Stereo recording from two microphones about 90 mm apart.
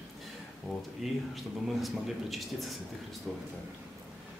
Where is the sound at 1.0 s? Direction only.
5° right (ahead or behind).